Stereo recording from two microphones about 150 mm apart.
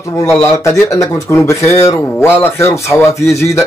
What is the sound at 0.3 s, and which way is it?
Speech, 20° left (ahead or behind).